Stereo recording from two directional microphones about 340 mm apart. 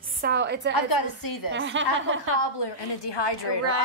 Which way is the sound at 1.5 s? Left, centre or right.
Right.